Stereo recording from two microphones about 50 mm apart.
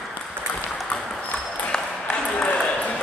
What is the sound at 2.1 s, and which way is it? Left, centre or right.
Ping, left.